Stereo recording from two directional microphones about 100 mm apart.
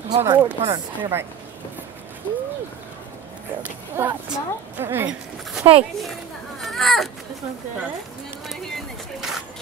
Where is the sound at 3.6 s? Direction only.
25° right (ahead or behind).